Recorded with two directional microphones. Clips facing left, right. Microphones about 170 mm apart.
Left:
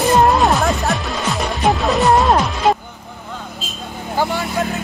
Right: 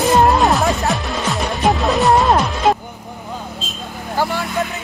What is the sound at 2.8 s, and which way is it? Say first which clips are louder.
Vehicle: right 3 dB; 15° right (ahead or behind).